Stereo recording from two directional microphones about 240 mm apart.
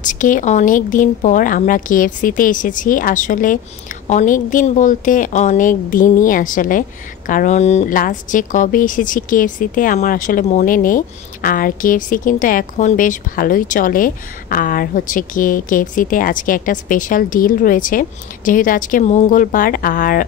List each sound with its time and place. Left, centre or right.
0.0 s a woman's voice: left